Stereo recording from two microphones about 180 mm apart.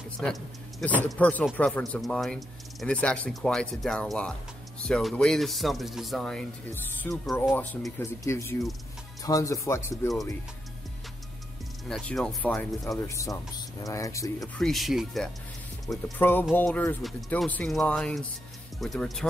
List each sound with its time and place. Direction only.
0.2 s speech: 5° left (ahead or behind)
11.9 s speech: 5° left (ahead or behind)
13.0 s speech: 15° left (ahead or behind)
14.6 s speech: centre (ahead or behind)